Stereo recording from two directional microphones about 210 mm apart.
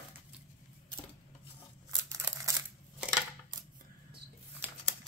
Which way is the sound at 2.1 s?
15° right (ahead or behind).